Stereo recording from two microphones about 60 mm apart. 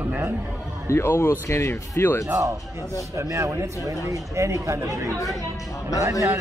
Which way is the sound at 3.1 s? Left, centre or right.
Right.